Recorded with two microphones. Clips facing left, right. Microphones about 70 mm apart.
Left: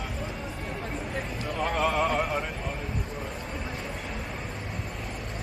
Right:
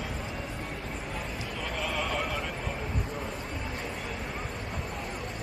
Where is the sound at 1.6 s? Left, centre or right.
Left.